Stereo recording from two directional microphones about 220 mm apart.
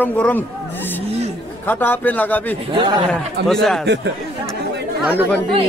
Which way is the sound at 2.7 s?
25° right (ahead or behind).